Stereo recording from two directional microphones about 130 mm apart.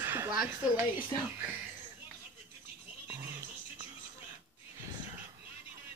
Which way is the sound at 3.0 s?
25° right (ahead or behind).